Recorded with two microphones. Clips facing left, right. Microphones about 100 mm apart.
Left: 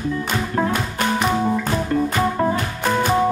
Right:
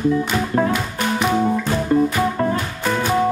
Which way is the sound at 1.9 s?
15° right (ahead or behind).